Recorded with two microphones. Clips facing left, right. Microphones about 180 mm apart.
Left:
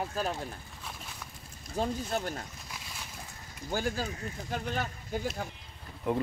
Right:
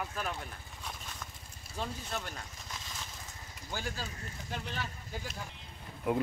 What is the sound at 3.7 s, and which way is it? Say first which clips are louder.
Speech: left 8 dB; 45° left (ahead or behind).